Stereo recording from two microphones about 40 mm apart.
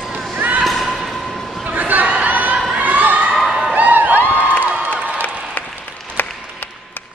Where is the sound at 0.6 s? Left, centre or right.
Centre.